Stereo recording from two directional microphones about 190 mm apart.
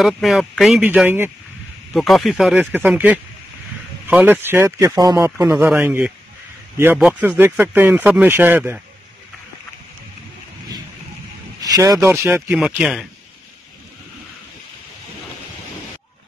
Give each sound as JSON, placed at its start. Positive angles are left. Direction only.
{"t": 0.0, "sound": "speech", "side_deg": 0}
{"t": 2.0, "sound": "speech", "side_deg": 0}
{"t": 11.6, "sound": "speech", "side_deg": -20}